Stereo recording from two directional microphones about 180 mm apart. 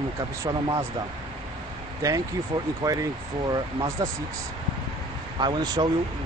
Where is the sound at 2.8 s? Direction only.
20° right (ahead or behind).